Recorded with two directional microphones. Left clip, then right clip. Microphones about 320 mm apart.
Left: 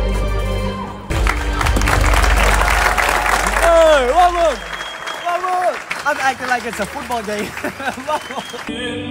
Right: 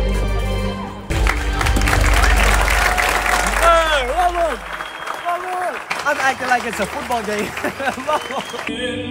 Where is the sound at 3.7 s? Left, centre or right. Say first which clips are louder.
Left 7 dB; left.